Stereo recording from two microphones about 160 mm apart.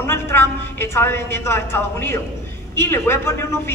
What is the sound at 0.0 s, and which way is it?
A man's voice, 15° left (ahead or behind).